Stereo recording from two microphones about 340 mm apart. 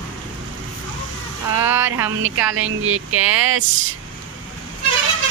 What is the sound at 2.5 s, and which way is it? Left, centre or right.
Speech, right.